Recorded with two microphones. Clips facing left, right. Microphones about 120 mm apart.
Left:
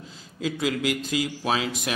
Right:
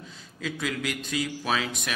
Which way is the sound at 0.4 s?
25° left (ahead or behind).